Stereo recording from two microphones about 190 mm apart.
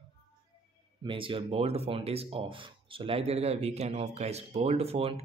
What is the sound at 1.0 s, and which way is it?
Speech, 25° right (ahead or behind).